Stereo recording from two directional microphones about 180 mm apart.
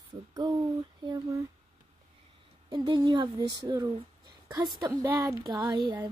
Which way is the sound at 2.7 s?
20° right (ahead or behind).